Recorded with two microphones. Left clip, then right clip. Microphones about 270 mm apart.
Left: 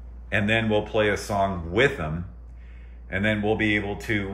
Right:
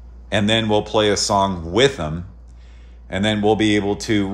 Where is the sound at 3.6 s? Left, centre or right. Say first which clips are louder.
Right 6 dB; right.